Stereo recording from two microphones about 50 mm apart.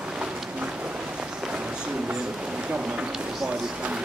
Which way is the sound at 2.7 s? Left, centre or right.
Centre.